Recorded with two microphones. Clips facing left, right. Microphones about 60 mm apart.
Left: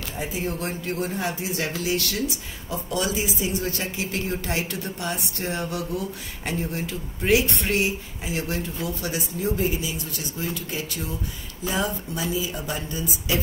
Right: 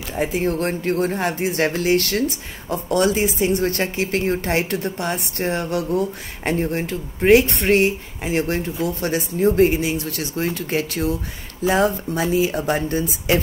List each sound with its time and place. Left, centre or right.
0.2 s speech: right